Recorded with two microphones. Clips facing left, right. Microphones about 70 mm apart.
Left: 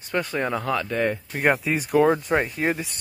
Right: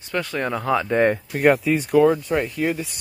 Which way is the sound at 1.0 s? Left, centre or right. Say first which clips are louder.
Right 6 dB; right.